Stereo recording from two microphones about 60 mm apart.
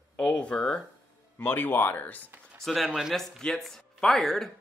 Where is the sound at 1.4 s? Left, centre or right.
Left.